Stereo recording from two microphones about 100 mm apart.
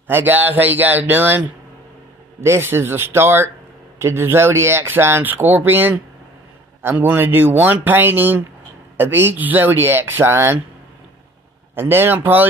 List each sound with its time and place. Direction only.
0.1 s speech: 20° right (ahead or behind)
2.4 s speech: 25° right (ahead or behind)
11.7 s speech: 25° right (ahead or behind)